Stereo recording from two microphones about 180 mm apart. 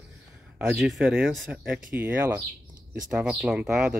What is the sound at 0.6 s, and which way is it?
Speech, centre (ahead or behind).